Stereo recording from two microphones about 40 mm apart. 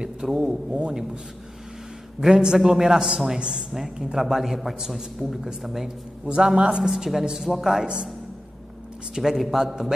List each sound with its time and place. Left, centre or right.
0.2 s a man's voice: centre
2.2 s a man's voice: centre
6.2 s a man's voice: right
6.8 s a man's voice: centre
9.1 s a man's voice: centre